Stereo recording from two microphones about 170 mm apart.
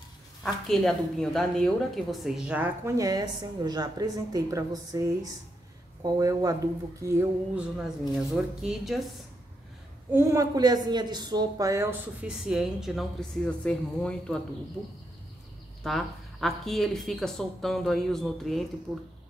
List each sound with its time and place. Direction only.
0.4 s a woman's voice: centre (ahead or behind)
10.1 s speech: 15° right (ahead or behind); by 14.4 s 5° left (ahead or behind)
15.8 s a woman's voice: centre (ahead or behind)